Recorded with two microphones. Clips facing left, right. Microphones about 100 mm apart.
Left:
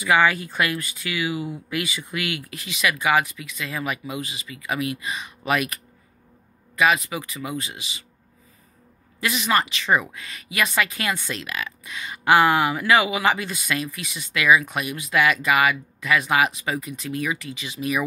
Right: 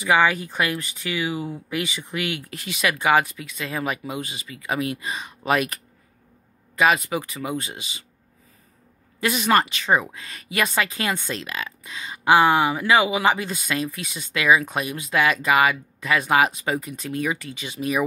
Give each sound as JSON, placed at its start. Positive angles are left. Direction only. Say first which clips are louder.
{"t": 0.0, "sound": "speech", "louder": "even", "side_deg": -20}
{"t": 2.5, "sound": "speech", "louder": "left 1 dB", "side_deg": -40}
{"t": 9.2, "sound": "speech", "louder": "right 3 dB", "side_deg": -40}
{"t": 13.9, "sound": "speech", "louder": "even", "side_deg": -40}